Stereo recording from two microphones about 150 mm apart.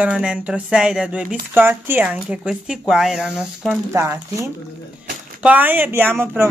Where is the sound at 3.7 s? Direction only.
20° right (ahead or behind).